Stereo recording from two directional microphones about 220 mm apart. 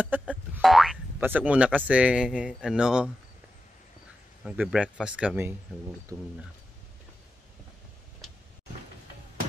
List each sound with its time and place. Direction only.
0.2 s speech: centre (ahead or behind)
4.5 s speech: 5° right (ahead or behind)